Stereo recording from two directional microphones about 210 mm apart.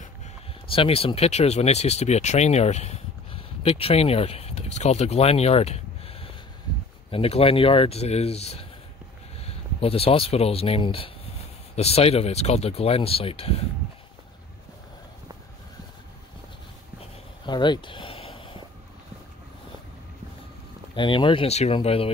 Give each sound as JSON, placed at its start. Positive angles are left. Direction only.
{"t": 0.7, "sound": "speech", "side_deg": 25}
{"t": 17.5, "sound": "a sound", "side_deg": 20}
{"t": 20.9, "sound": "speech", "side_deg": 20}